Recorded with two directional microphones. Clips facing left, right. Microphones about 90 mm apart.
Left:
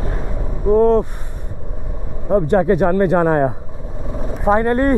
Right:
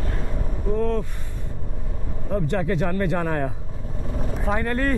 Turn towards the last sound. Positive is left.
turn(degrees=30)  # may be behind; listen again after turning